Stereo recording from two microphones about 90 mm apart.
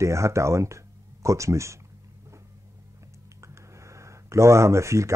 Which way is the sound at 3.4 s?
35° right (ahead or behind).